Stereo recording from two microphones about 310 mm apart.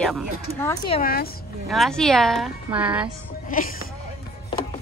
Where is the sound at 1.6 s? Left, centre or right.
Centre.